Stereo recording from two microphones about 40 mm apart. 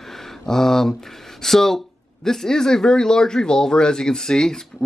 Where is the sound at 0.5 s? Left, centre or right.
Centre.